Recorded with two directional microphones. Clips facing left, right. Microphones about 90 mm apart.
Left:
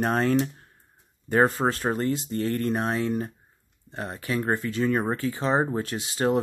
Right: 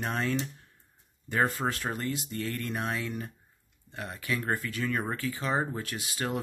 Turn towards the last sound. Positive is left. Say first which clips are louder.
# left 9 dB
turn(degrees=30)  # may be behind; listen again after turning